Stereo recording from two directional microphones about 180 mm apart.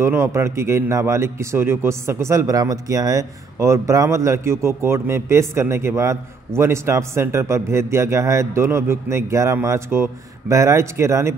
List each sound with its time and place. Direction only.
0.0 s speech: 15° right (ahead or behind)